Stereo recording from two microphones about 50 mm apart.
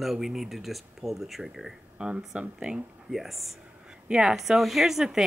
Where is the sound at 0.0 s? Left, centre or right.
Centre.